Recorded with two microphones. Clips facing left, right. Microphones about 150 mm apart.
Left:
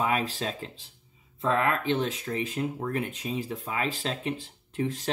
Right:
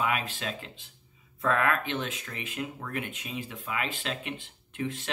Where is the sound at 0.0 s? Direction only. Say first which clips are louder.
Left 3 dB; 35° left (ahead or behind).